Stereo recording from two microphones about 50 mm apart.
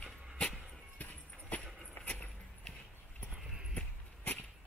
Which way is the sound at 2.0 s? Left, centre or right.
Left.